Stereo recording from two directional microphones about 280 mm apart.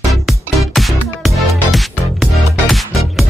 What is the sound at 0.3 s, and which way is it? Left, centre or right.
Music, centre.